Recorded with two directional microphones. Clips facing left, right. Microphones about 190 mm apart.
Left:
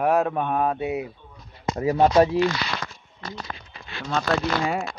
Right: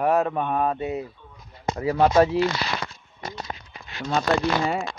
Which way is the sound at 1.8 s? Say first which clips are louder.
Left 1 dB; 25° left (ahead or behind).